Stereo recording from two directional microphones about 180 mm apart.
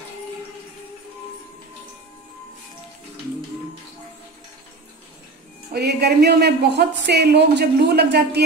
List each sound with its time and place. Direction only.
5.7 s speech: 65° right (ahead or behind)